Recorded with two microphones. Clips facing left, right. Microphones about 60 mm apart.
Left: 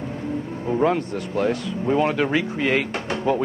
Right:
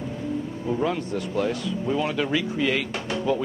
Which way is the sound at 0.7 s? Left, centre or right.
Left.